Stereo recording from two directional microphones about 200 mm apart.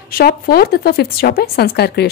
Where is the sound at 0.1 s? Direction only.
50° left (ahead or behind).